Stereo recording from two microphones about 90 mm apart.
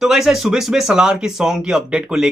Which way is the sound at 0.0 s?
5° right (ahead or behind).